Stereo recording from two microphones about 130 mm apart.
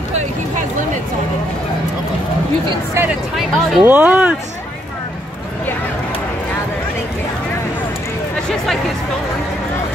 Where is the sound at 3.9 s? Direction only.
10° right (ahead or behind).